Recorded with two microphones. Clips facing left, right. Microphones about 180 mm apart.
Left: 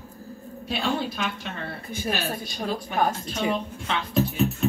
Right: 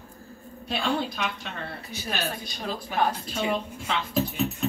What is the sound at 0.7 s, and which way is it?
Speech, 45° left (ahead or behind).